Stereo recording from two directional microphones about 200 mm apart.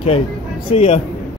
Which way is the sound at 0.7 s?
30° left (ahead or behind).